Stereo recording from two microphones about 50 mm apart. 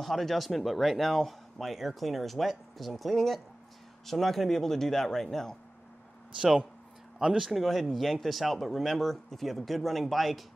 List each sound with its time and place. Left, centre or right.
0.0 s speech: centre
7.2 s speech: centre
7.6 s speech: centre